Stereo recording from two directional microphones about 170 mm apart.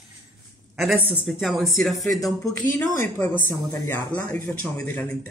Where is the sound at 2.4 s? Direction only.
10° left (ahead or behind).